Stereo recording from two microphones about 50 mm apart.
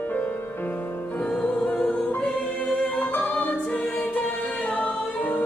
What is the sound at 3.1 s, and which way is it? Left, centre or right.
Choir, left.